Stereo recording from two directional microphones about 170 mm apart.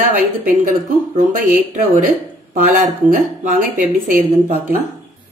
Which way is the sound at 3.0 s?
55° right (ahead or behind).